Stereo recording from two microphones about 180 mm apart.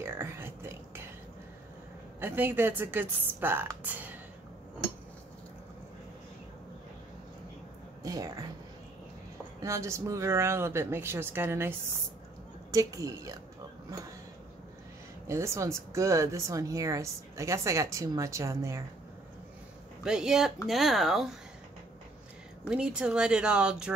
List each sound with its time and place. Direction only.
0.0 s a sound: 15° right (ahead or behind)
2.1 s speech: 10° right (ahead or behind)
8.0 s a sound: 20° right (ahead or behind)
9.6 s speech: 15° right (ahead or behind)
12.7 s speech: 20° right (ahead or behind)
15.2 s speech: 15° right (ahead or behind)
20.0 s speech: 5° right (ahead or behind)
22.7 s speech: 5° right (ahead or behind)